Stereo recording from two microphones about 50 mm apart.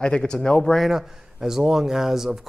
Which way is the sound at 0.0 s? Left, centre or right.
Centre.